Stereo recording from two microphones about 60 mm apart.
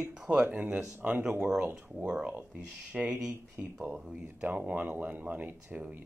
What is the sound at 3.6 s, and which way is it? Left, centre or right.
Speech, right.